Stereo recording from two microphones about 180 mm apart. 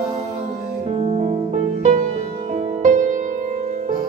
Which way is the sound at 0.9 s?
35° right (ahead or behind).